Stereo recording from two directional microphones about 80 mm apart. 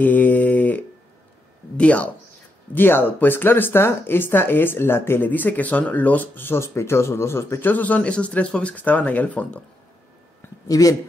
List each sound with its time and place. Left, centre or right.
0.0 s a sound: left
1.8 s speech: centre; by 7.7 s left
7.7 s speech: centre
10.7 s speech: left